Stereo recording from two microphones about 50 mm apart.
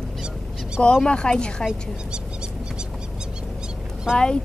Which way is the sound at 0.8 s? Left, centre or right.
Left.